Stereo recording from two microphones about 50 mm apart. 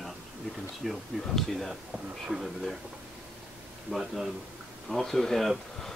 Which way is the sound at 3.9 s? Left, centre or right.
Centre.